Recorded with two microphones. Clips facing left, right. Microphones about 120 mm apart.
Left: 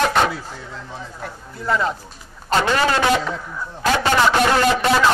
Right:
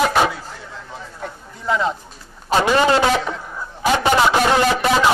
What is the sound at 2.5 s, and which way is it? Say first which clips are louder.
A man's voice: right 3 dB; 15° right (ahead or behind).